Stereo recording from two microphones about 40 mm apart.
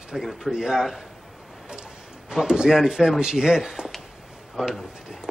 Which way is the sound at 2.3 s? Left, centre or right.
Centre.